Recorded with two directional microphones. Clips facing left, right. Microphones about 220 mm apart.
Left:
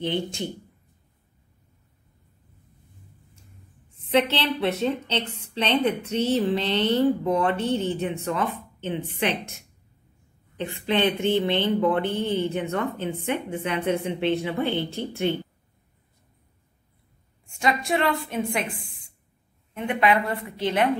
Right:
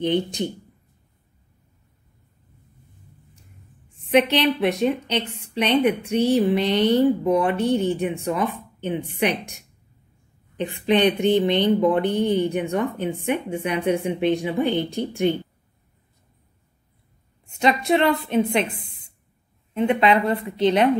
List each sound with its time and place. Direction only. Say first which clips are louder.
0.0 s speech: right 5 dB; 20° right (ahead or behind)
4.1 s speech: right 4 dB; 15° right (ahead or behind)
17.5 s a woman's voice: right 5 dB; 20° right (ahead or behind)